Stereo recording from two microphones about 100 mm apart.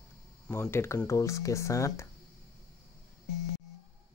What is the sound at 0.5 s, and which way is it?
Speech, 25° left (ahead or behind).